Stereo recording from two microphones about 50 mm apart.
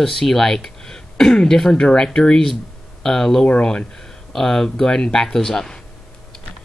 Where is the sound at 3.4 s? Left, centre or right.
Left.